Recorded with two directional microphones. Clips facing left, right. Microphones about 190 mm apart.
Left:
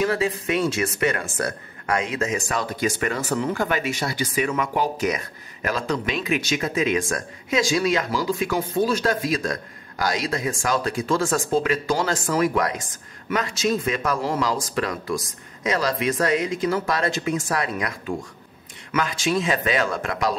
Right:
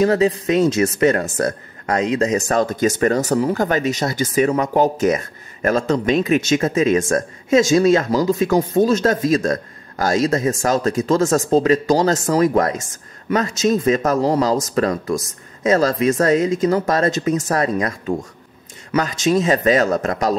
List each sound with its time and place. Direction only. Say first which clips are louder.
0.0 s speech: right 7 dB; 40° right (ahead or behind)